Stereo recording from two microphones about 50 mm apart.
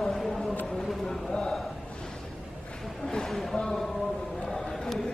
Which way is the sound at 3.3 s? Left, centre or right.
Centre.